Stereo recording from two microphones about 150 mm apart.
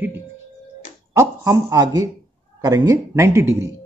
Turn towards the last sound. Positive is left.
turn(degrees=-15)  # may be behind; listen again after turning